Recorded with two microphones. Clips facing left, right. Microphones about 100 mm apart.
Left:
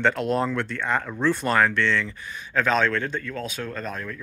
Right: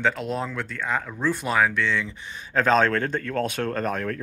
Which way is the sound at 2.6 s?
35° right (ahead or behind).